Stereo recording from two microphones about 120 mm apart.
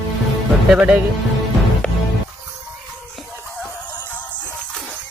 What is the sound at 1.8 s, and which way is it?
Music, 10° left (ahead or behind).